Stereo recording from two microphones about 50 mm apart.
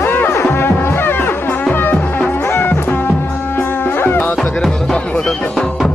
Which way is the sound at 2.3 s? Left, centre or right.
Left.